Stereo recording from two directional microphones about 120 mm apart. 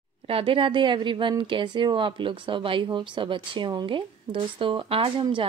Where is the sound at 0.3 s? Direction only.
50° right (ahead or behind).